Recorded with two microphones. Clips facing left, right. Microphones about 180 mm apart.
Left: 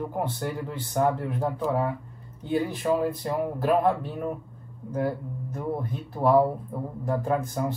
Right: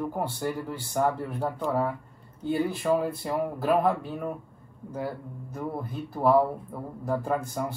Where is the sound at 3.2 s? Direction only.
Centre (ahead or behind).